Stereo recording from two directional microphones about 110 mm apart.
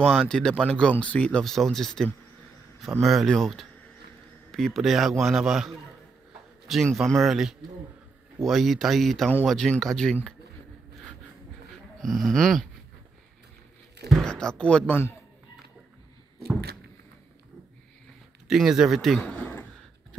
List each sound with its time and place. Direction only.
0.0 s a man's voice: 5° left (ahead or behind)
12.0 s a man's voice: centre (ahead or behind)
14.0 s speech: centre (ahead or behind)
18.5 s a man's voice: 5° right (ahead or behind)